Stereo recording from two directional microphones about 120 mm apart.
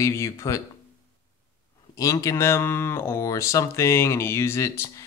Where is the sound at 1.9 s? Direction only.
30° left (ahead or behind).